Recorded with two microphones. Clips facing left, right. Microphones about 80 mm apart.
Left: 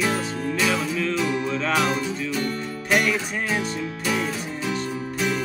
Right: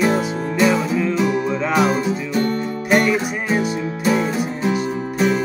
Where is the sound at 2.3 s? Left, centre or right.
Right.